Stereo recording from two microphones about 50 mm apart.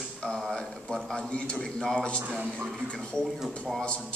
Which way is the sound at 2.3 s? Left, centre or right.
Right.